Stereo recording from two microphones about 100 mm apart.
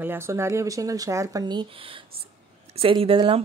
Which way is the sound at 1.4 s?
55° right (ahead or behind).